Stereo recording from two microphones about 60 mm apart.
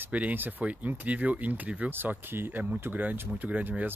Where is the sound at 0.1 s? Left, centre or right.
Right.